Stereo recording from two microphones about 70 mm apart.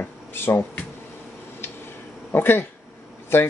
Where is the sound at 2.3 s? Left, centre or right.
Left.